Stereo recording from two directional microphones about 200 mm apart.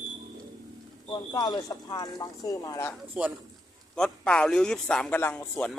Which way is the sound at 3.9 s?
5° left (ahead or behind).